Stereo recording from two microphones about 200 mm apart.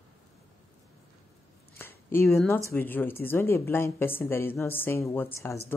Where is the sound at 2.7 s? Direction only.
10° left (ahead or behind).